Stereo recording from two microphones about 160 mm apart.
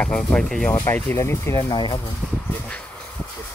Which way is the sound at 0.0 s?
5° left (ahead or behind).